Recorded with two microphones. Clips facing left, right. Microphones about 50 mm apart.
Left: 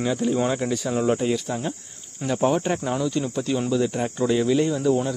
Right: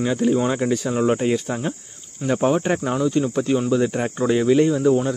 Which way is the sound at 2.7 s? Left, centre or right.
Right.